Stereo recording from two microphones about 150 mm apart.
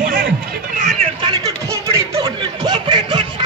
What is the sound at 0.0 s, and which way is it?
Music, 70° right (ahead or behind).